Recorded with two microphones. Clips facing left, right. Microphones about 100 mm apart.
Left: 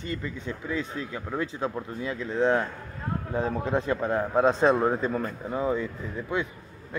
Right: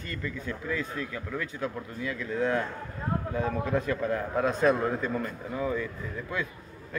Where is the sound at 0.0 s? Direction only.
25° left (ahead or behind).